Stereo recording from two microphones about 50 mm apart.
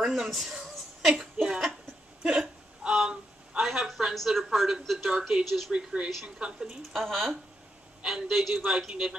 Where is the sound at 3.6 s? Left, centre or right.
Centre.